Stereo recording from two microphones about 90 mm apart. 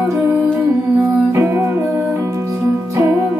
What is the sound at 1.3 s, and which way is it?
Music, 30° right (ahead or behind).